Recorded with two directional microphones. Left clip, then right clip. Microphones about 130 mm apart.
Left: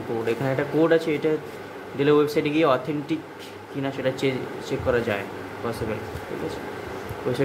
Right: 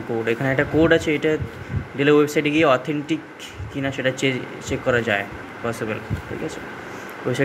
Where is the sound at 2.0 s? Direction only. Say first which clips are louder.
Right 3 dB; 5° right (ahead or behind).